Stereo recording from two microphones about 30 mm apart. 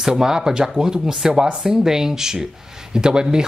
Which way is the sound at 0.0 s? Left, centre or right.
Centre.